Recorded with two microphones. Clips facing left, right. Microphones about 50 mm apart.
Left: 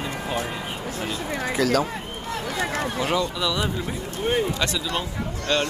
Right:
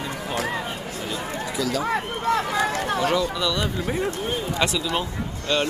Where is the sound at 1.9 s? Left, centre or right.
Right.